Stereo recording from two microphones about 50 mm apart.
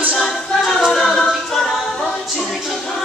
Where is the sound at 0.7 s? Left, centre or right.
Centre.